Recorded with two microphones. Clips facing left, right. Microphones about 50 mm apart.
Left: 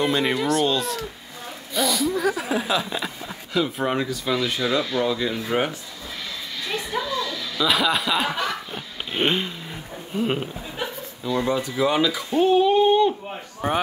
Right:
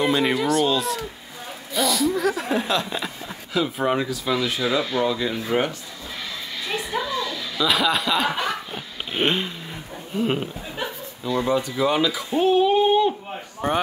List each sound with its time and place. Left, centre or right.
0.0 s speech: centre
6.7 s a sound: centre
7.6 s speech: centre
8.3 s snicker: right
8.7 s a sound: centre
10.1 s speech: centre
13.6 s speech: centre